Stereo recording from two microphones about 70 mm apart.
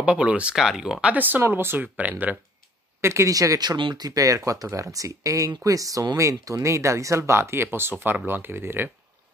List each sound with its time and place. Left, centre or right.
0.0 s speech: centre
0.6 s speech: centre
1.0 s speech: right
3.0 s speech: right